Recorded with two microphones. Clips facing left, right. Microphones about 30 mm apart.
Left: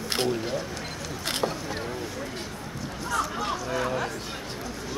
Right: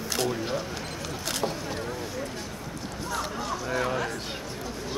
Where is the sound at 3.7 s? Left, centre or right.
Centre.